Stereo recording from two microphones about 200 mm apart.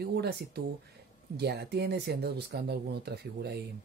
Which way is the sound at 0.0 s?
55° right (ahead or behind).